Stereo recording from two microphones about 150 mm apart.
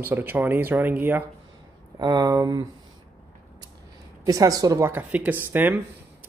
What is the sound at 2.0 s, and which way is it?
Speech, 25° right (ahead or behind).